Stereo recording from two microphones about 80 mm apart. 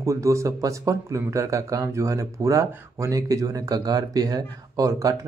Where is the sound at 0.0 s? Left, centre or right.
Right.